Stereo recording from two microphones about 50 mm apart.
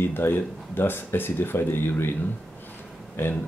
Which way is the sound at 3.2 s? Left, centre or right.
Left.